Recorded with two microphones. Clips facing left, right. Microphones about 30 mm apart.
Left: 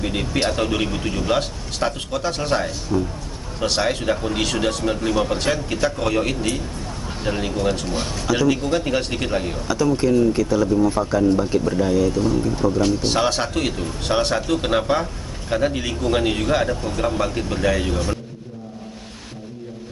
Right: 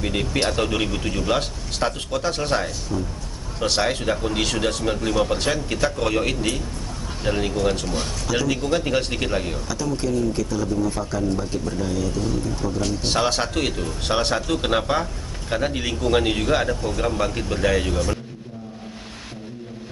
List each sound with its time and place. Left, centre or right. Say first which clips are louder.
0.0 s speech: left 1 dB; centre
9.9 s speech: left 4 dB; centre
13.0 s speech: left 2 dB; centre